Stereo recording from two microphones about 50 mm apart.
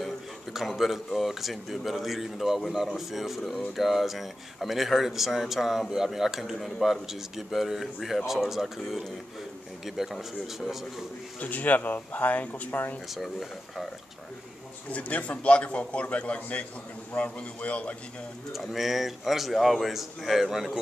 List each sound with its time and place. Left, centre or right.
0.0 s speech: centre
11.3 s speech: left
13.1 s speech: centre
14.9 s a man's voice: left
18.5 s speech: centre